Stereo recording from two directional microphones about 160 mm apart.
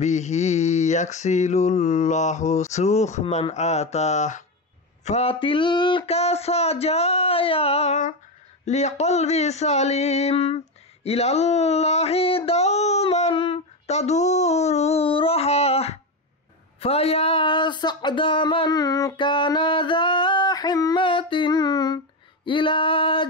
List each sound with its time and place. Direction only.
0.0 s mantra: 45° left (ahead or behind)
5.0 s speech: 40° left (ahead or behind)
8.6 s mantra: 45° left (ahead or behind)
11.1 s a sound: 40° left (ahead or behind)
16.8 s speech: 40° left (ahead or behind)